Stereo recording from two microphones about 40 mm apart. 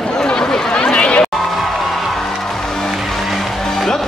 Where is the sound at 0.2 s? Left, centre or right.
Centre.